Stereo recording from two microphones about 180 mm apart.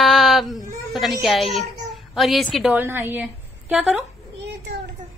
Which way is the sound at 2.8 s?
10° right (ahead or behind).